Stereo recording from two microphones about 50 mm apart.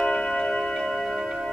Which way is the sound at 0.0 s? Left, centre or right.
Centre.